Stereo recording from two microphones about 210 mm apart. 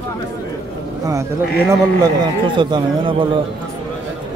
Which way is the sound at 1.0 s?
15° right (ahead or behind).